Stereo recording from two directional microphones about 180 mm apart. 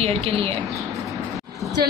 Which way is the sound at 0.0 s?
35° right (ahead or behind).